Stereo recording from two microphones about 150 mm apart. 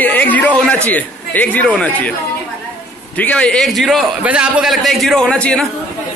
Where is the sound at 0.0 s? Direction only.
10° left (ahead or behind).